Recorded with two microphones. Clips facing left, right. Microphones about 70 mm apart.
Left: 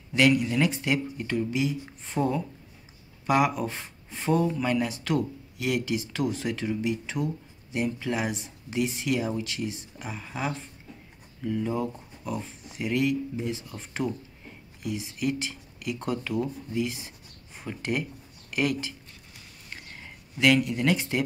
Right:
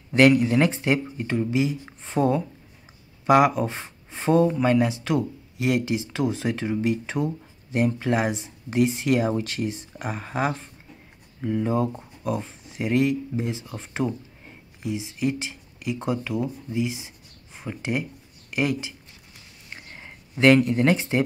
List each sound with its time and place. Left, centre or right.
0.4 s speech: right
1.2 s speech: right
3.3 s speech: right; by 18.9 s centre
20.3 s speech: right